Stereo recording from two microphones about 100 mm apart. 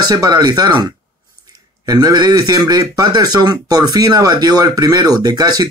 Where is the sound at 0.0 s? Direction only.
45° right (ahead or behind).